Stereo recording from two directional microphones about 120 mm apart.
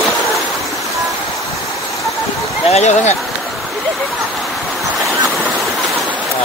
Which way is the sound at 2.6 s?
70° left (ahead or behind).